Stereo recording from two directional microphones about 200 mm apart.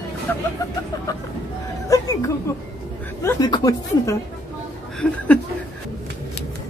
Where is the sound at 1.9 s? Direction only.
15° left (ahead or behind).